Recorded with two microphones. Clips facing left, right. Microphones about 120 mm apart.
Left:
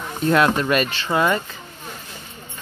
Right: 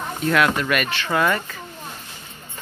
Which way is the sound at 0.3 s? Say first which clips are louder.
Left 2 dB; 30° left (ahead or behind).